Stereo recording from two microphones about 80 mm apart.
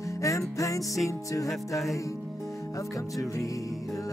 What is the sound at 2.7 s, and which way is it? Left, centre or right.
Music, left.